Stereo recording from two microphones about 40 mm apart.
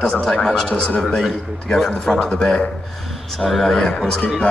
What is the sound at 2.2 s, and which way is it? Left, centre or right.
Speech, centre.